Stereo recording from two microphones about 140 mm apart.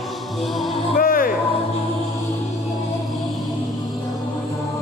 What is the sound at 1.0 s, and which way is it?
Music, 85° left.